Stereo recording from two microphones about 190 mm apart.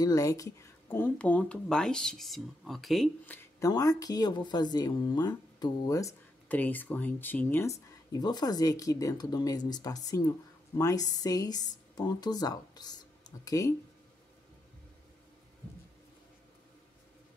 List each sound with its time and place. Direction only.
0.0 s speech: 15° left (ahead or behind); by 3.3 s centre (ahead or behind)
3.3 s speech: 15° left (ahead or behind)